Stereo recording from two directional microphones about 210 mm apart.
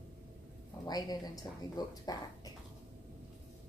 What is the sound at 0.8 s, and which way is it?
A woman's voice, 20° left (ahead or behind).